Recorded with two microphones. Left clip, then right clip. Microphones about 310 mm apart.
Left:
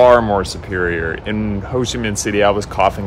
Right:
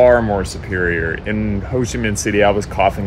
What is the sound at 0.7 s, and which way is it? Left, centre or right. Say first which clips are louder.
Speech: even; left.